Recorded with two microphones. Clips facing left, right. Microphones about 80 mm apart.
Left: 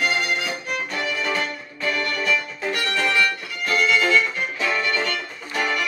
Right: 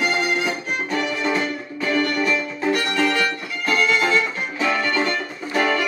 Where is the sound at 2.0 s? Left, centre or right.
Right.